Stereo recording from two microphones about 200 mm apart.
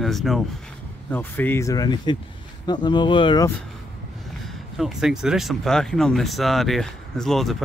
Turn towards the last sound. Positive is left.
turn(degrees=0)  # may be behind; listen again after turning